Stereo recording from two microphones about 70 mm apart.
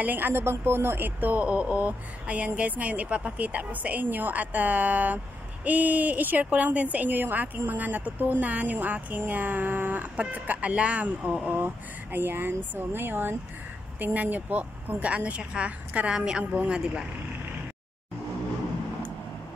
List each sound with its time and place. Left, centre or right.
0.0 s speech: right; by 17.0 s centre